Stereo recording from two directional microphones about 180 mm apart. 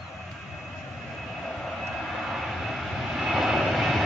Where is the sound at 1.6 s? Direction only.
Centre (ahead or behind).